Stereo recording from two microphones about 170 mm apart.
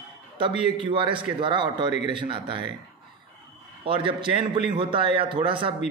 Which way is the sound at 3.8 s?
30° right (ahead or behind).